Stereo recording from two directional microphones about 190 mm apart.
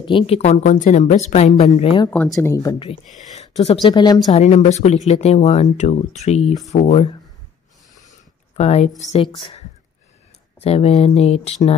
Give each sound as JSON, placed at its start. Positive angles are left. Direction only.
{"t": 0.0, "sound": "a woman's voice", "side_deg": 30}
{"t": 2.0, "sound": "speech", "side_deg": 10}
{"t": 3.2, "sound": "a sound", "side_deg": 35}
{"t": 3.8, "sound": "a woman's voice", "side_deg": 20}
{"t": 4.3, "sound": "a woman's voice", "side_deg": 35}
{"t": 8.5, "sound": "a woman's voice", "side_deg": 35}
{"t": 10.6, "sound": "a woman's voice", "side_deg": 35}